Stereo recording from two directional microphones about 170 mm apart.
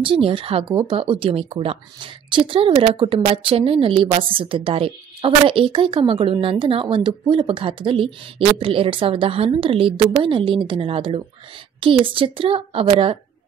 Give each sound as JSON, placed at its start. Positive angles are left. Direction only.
{"t": 0.0, "sound": "speech", "side_deg": -30}